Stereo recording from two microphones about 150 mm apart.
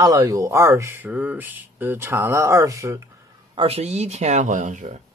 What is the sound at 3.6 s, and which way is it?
Speech, 45° right (ahead or behind).